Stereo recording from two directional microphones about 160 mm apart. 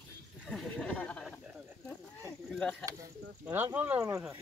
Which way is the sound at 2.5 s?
5° left (ahead or behind).